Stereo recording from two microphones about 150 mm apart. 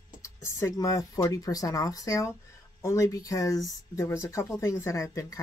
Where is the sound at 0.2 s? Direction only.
20° left (ahead or behind).